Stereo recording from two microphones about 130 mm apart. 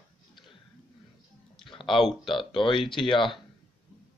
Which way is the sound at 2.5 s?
40° left (ahead or behind).